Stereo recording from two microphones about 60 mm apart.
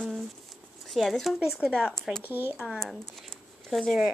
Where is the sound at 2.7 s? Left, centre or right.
Centre.